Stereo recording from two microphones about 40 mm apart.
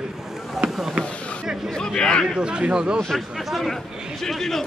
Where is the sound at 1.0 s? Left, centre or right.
Left.